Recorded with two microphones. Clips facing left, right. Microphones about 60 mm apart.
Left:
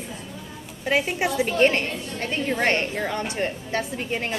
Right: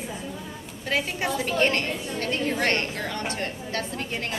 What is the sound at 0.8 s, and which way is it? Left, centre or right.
A woman's voice, centre.